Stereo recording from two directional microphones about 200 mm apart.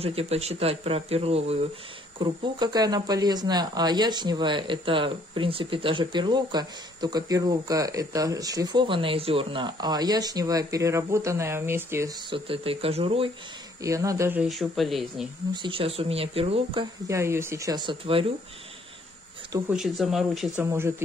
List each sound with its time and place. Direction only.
0.0 s speech: 30° right (ahead or behind); by 12.1 s 10° right (ahead or behind)
12.3 s speech: 30° right (ahead or behind)
13.8 s speech: 15° right (ahead or behind); by 15.2 s centre (ahead or behind)
15.5 s speech: 25° right (ahead or behind)
17.1 s speech: 15° right (ahead or behind)
19.7 s speech: centre (ahead or behind)